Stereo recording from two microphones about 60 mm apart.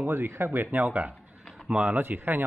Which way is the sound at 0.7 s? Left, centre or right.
Right.